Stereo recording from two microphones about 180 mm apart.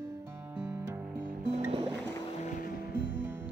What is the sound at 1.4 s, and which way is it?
Music, 40° right (ahead or behind).